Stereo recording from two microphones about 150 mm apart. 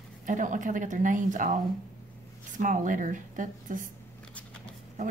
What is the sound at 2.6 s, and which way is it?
Speech, 60° right (ahead or behind).